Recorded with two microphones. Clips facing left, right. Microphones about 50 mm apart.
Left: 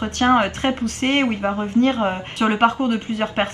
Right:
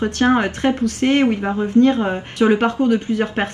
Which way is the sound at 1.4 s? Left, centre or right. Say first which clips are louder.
Right 1 dB; centre.